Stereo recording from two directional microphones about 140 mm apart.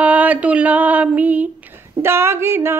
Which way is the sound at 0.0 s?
10° right (ahead or behind).